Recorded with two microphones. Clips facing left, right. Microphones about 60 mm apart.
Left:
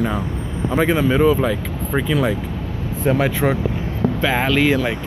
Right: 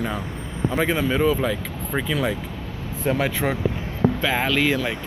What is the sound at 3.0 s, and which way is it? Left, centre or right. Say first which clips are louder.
Speech: left 5 dB; left.